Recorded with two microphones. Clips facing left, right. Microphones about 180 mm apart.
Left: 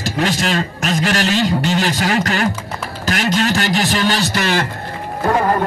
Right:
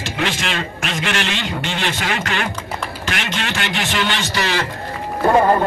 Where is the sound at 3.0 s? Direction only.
40° left (ahead or behind).